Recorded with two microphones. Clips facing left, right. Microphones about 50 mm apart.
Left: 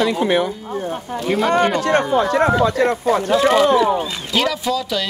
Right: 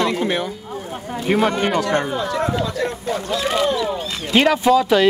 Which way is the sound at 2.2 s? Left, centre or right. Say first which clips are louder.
Left 6 dB; left.